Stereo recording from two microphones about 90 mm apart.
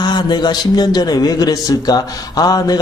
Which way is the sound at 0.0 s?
55° left (ahead or behind).